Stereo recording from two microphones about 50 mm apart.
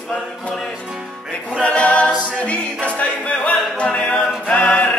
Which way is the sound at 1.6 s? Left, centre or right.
Left.